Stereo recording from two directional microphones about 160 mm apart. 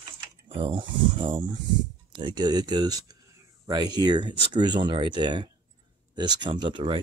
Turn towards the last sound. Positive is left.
turn(degrees=-30)  # may be behind; listen again after turning